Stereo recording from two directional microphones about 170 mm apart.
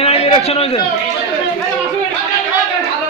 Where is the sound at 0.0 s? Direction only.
35° left (ahead or behind).